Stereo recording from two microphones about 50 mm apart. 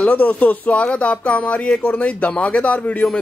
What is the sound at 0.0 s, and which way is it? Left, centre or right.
Speech, left.